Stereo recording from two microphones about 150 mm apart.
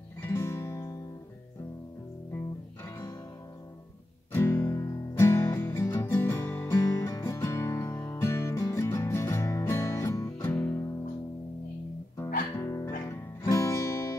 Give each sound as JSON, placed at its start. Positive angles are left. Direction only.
{"t": 0.2, "sound": "music", "side_deg": 15}
{"t": 2.3, "sound": "music", "side_deg": 20}
{"t": 4.3, "sound": "music", "side_deg": 15}
{"t": 12.5, "sound": "guitar", "side_deg": 20}